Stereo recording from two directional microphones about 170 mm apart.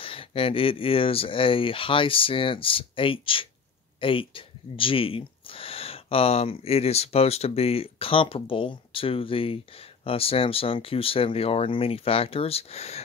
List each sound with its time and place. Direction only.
0.0 s speech: 35° left (ahead or behind)